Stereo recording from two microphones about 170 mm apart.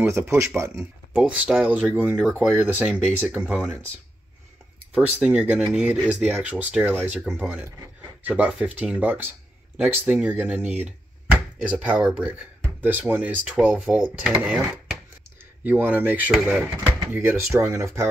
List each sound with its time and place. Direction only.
0.0 s speech: 10° right (ahead or behind)
4.9 s speech: 5° right (ahead or behind)